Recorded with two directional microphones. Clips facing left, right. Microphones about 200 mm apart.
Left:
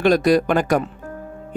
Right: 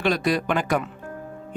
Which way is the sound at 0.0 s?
40° left (ahead or behind).